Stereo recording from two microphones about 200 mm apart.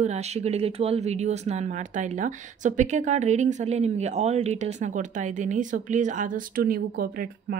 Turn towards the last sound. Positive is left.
turn(degrees=-45)  # may be behind; listen again after turning